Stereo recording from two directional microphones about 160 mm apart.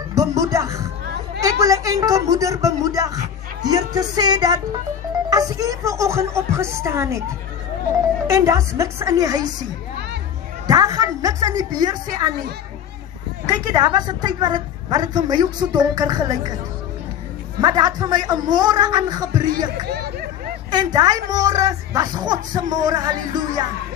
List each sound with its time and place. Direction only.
0.1 s music: 20° right (ahead or behind)
1.4 s a woman's voice: 20° right (ahead or behind)
10.7 s a woman's voice: 20° right (ahead or behind)
13.7 s a woman's voice: 25° right (ahead or behind)
17.6 s a woman's voice: 25° right (ahead or behind)
19.9 s a sound: 75° right (ahead or behind)
20.7 s a woman's voice: 25° right (ahead or behind)